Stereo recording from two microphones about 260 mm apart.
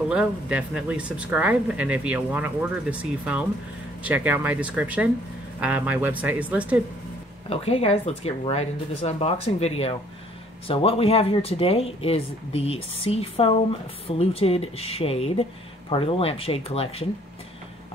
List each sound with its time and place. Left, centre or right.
0.1 s speech: centre
7.4 s speech: left